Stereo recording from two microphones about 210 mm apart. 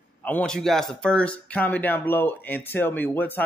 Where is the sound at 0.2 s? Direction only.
5° left (ahead or behind).